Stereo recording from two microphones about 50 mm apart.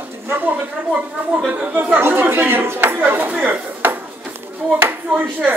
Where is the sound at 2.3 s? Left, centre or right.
Right.